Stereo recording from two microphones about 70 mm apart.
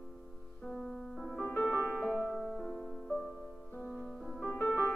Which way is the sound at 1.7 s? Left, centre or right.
Right.